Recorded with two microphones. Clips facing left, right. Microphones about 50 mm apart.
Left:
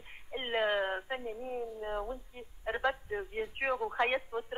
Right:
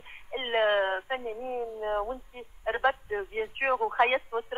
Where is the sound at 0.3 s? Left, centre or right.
Right.